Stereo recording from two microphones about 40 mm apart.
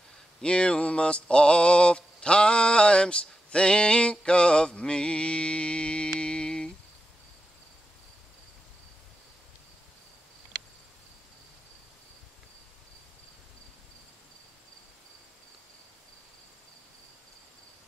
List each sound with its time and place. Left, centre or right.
0.4 s mantra: left